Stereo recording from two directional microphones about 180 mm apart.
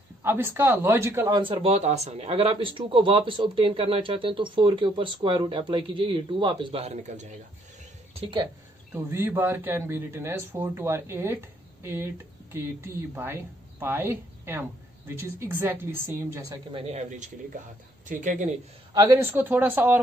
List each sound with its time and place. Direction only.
0.2 s speech: 10° right (ahead or behind)
1.4 s speech: 30° right (ahead or behind)
8.9 s speech: 15° right (ahead or behind)
16.7 s speech: 35° right (ahead or behind)
18.9 s speech: 20° right (ahead or behind)